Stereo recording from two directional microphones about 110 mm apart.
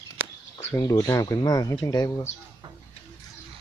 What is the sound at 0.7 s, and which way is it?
Speech, 30° left (ahead or behind).